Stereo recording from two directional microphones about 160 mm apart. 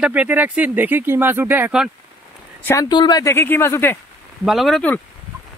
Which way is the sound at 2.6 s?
20° left (ahead or behind).